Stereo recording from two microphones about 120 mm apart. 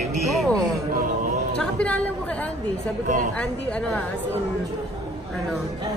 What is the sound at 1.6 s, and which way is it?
Speech, 10° left (ahead or behind).